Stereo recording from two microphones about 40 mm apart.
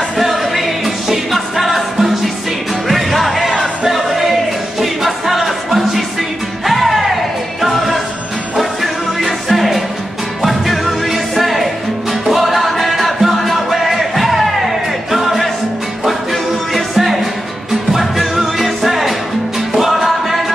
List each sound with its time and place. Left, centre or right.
0.2 s music: centre
16.7 s music: centre